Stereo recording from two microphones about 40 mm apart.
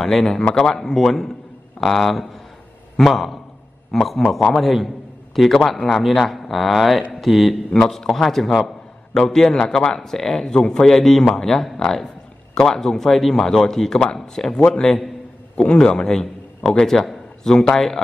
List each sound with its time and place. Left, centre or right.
0.0 s a man's voice: centre